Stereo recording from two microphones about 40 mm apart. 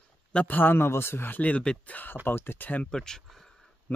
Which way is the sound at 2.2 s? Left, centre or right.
Left.